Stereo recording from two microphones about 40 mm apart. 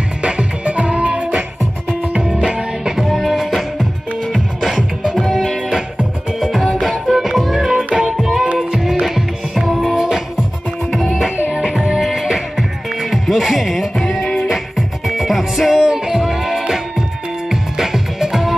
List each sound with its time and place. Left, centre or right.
0.2 s music: right
2.4 s music: centre
3.1 s music: centre
5.1 s music: centre
7.7 s music: centre
9.0 s music: centre
10.9 s music: centre
11.5 s music: right
13.1 s music: centre
14.2 s music: left
14.5 s music: centre